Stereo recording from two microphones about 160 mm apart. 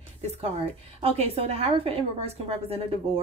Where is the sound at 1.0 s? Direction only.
40° right (ahead or behind).